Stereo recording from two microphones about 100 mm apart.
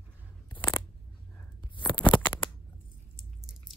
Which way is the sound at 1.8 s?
55° left (ahead or behind).